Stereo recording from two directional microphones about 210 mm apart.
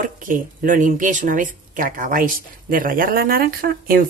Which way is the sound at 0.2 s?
40° right (ahead or behind).